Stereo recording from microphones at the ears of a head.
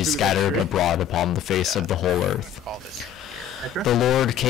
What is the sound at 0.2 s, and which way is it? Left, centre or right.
Speech, left.